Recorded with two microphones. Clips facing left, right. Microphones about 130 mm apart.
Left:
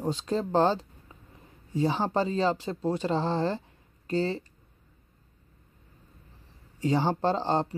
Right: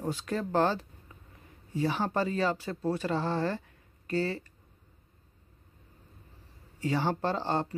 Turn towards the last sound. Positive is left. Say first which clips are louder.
# left 4 dB
turn(degrees=30)  # may be behind; listen again after turning